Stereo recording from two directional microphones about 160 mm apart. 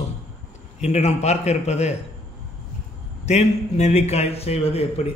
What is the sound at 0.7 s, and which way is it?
A man's voice, 45° left (ahead or behind).